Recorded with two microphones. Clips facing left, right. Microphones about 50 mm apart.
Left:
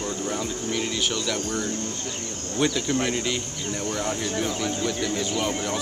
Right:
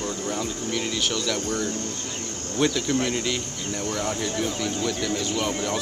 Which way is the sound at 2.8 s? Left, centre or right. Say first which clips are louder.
Even; left.